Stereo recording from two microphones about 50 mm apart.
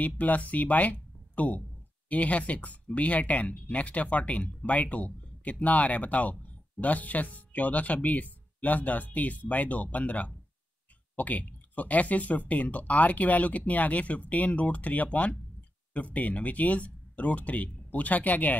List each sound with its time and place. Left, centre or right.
0.0 s speech: left